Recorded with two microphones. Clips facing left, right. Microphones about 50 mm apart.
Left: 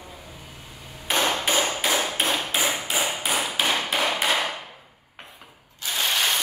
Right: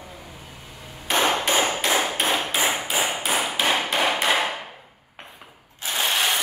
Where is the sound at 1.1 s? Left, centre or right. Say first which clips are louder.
Right 3 dB; centre.